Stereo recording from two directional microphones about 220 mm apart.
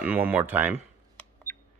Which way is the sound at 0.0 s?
10° right (ahead or behind).